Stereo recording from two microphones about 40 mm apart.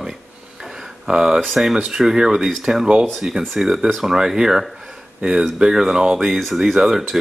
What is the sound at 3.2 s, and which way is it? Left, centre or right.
Speech, right.